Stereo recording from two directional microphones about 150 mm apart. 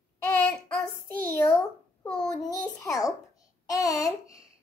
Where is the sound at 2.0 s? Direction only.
5° left (ahead or behind).